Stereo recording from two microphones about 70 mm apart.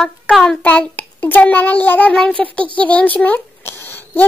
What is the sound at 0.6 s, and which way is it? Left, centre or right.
Child singing, centre.